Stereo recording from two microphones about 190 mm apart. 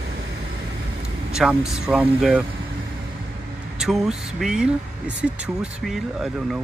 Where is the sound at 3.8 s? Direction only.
Centre (ahead or behind).